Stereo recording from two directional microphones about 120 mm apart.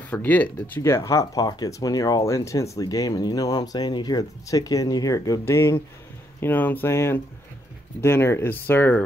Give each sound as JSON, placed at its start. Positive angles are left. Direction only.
{"t": 0.0, "sound": "speech", "side_deg": 15}